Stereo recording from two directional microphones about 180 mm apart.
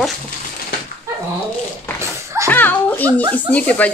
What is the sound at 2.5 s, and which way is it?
A child's voice, 10° left (ahead or behind).